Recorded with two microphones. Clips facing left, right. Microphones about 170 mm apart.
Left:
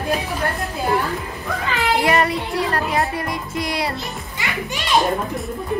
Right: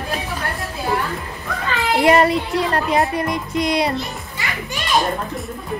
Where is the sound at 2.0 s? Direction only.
25° right (ahead or behind).